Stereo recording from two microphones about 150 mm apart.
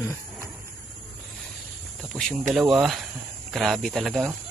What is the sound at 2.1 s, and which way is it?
Cricket, 25° right (ahead or behind).